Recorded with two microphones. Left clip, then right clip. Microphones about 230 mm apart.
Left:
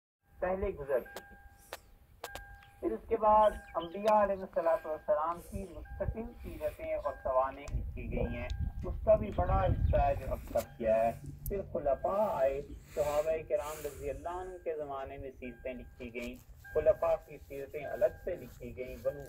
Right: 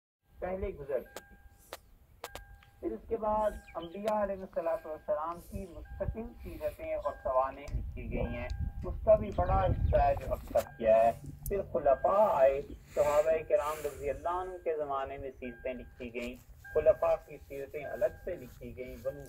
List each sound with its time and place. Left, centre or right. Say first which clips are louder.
0.4 s a man's voice: left 3 dB; left
1.7 s a sound: even; centre
2.8 s a man's voice: left 4 dB; left
3.8 s speech: left 5 dB; centre
5.0 s speech: left 2 dB; centre
5.3 s speech: left 2 dB; centre
15.6 s speech: right 3 dB; right
16.0 s speech: right 2 dB; centre